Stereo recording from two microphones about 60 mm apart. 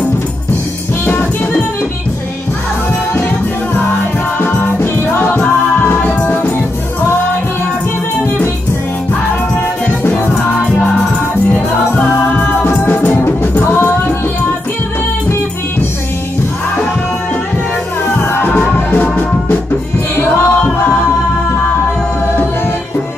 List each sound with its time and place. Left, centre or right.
1.0 s music: left
4.4 s music: left
11.9 s music: left
18.2 s music: left